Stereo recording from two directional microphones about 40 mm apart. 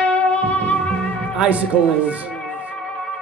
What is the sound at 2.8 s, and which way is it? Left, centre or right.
Music, centre.